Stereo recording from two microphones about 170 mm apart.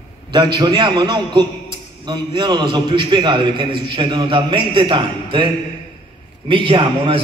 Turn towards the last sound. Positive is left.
turn(degrees=-30)  # may be behind; listen again after turning